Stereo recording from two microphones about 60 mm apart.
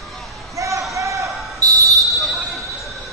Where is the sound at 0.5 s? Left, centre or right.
Right.